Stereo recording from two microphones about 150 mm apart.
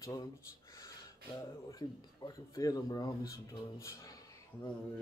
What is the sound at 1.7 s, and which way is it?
Speech, 25° left (ahead or behind).